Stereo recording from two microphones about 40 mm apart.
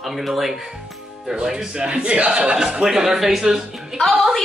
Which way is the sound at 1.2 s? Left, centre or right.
Centre.